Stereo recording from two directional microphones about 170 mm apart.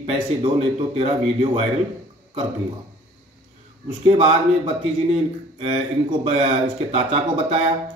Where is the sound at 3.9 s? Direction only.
30° right (ahead or behind).